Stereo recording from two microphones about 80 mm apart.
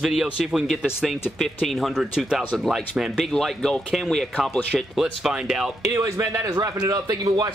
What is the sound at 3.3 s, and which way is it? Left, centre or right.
Speech, centre.